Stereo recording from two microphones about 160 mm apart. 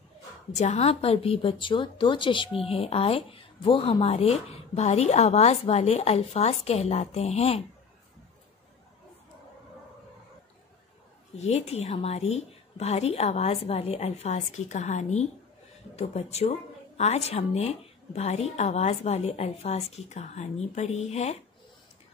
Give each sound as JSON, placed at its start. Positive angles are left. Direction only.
{"t": 0.6, "sound": "a woman's voice", "side_deg": 45}
{"t": 11.3, "sound": "speech", "side_deg": 40}